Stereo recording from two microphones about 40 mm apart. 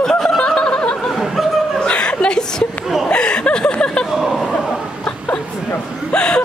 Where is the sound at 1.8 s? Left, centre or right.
Left.